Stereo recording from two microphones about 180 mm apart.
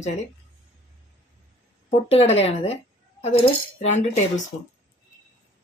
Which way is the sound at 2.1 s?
35° left (ahead or behind).